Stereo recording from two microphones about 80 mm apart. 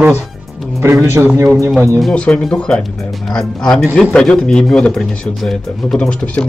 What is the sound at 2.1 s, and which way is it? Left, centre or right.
Speech, centre.